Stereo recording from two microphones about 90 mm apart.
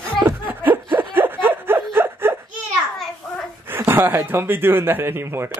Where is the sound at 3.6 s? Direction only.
25° right (ahead or behind).